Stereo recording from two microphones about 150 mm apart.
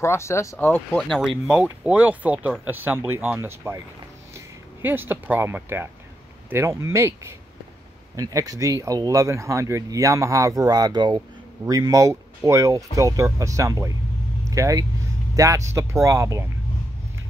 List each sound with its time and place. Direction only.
0.0 s speech: 20° left (ahead or behind); by 3.8 s 20° right (ahead or behind)
4.8 s speech: 15° right (ahead or behind)